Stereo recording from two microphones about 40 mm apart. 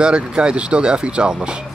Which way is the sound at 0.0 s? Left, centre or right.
Right.